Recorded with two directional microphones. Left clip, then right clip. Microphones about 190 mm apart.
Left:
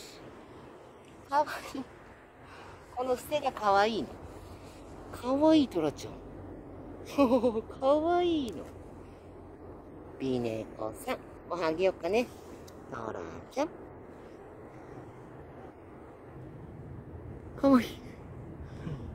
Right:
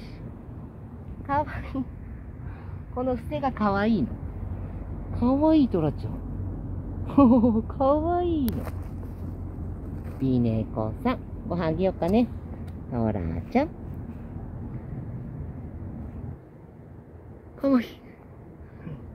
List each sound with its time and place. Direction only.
1.3 s speech: centre (ahead or behind)
3.0 s speech: centre (ahead or behind)
5.1 s speech: 5° left (ahead or behind)
7.1 s a woman's voice: 5° left (ahead or behind)
10.2 s speech: 10° left (ahead or behind)
17.6 s a woman's voice: centre (ahead or behind)